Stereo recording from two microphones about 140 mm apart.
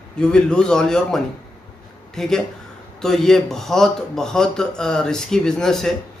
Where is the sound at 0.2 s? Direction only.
5° left (ahead or behind).